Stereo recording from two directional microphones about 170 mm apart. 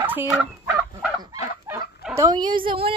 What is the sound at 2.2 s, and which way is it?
Speech, 25° right (ahead or behind).